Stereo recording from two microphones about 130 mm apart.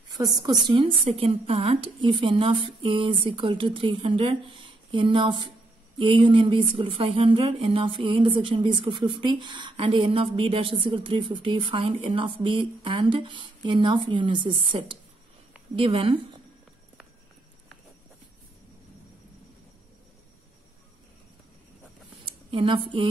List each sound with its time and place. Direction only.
0.1 s a woman's voice: 30° right (ahead or behind)
1.0 s a woman's voice: 50° right (ahead or behind)
22.2 s a sound: 40° right (ahead or behind)